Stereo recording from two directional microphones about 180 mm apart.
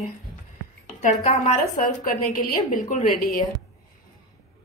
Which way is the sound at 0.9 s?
40° left (ahead or behind).